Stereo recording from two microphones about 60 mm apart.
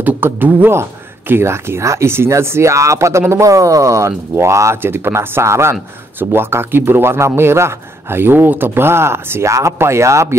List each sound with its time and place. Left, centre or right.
0.0 s speech: right
4.8 s a man's voice: right